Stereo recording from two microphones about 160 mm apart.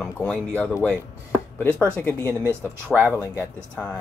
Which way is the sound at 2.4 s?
15° right (ahead or behind).